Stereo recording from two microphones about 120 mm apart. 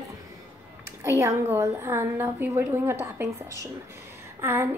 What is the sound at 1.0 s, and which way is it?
A woman's voice, 25° right (ahead or behind).